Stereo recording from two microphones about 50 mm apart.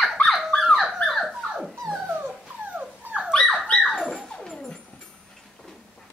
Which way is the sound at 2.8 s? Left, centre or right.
Centre.